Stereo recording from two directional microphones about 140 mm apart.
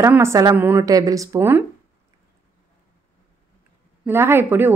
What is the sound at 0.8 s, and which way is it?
Speech, 25° right (ahead or behind).